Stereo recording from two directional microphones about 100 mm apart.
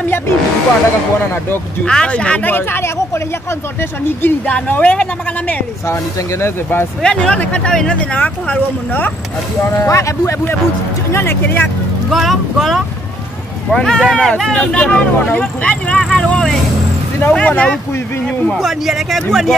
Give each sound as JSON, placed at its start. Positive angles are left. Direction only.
{"t": 1.9, "sound": "speech", "side_deg": 10}
{"t": 4.2, "sound": "speech", "side_deg": 15}
{"t": 6.4, "sound": "speech", "side_deg": 25}
{"t": 7.0, "sound": "speech", "side_deg": 10}
{"t": 9.8, "sound": "speech", "side_deg": 30}
{"t": 12.1, "sound": "speech", "side_deg": 0}
{"t": 18.2, "sound": "speech", "side_deg": 0}